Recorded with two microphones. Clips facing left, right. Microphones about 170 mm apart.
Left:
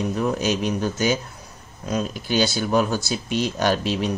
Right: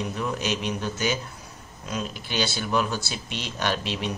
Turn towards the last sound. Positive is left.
turn(degrees=40)  # may be behind; listen again after turning